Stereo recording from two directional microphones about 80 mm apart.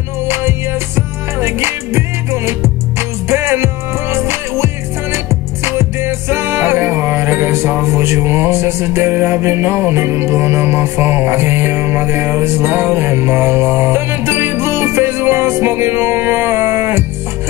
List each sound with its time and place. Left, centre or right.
0.3 s music: right